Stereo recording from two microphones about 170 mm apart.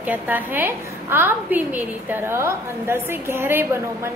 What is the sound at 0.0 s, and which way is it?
A woman's voice, 10° right (ahead or behind).